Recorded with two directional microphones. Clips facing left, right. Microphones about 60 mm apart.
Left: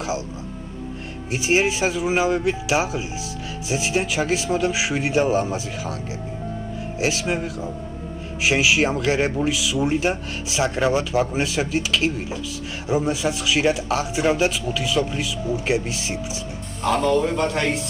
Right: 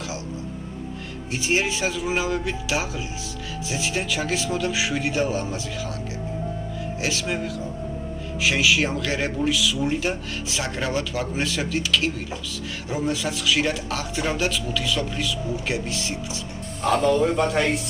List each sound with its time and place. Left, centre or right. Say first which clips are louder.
1.3 s speech: left 4 dB; left
7.0 s speech: left 4 dB; left
17.4 s speech: right 1 dB; centre